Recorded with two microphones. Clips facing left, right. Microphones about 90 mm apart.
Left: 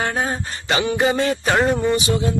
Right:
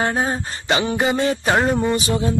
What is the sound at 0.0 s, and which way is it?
Speech, 25° right (ahead or behind).